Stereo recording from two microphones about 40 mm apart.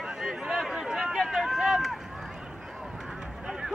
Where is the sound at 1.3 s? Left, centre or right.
Centre.